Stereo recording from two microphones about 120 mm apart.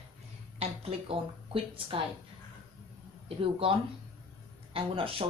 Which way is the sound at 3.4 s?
50° right (ahead or behind).